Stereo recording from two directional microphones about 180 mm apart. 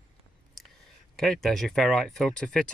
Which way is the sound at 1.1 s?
Centre (ahead or behind).